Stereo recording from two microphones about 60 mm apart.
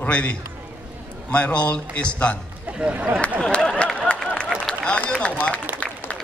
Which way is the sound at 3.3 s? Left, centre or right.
Centre.